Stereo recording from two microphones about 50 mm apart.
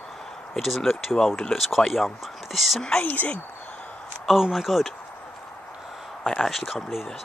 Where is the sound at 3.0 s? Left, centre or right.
Left.